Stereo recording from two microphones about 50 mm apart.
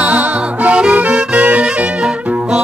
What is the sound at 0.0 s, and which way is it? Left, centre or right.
Music, right.